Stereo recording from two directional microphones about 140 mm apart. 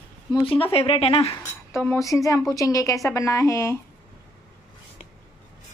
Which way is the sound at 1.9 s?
20° left (ahead or behind).